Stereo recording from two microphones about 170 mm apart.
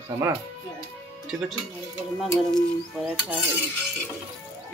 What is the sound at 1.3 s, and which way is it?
Speech, 5° right (ahead or behind).